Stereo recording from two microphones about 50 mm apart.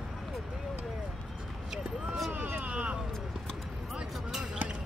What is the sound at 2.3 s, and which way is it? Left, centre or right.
Vehicle, right.